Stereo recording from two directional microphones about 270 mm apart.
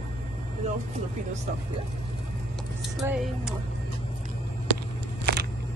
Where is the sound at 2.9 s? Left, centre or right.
Centre.